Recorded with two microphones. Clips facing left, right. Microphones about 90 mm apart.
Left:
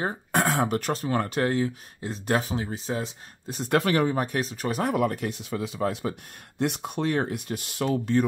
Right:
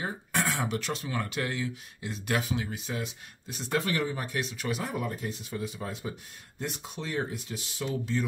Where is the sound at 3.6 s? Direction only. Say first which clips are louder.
Left 7 dB; 60° left (ahead or behind).